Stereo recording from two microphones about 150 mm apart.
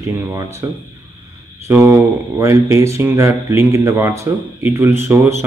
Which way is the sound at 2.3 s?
20° right (ahead or behind).